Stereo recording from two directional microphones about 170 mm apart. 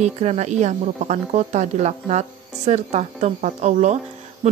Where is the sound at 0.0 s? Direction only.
40° right (ahead or behind).